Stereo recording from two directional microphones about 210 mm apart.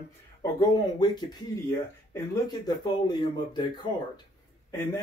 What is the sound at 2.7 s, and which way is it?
Speech, 20° left (ahead or behind).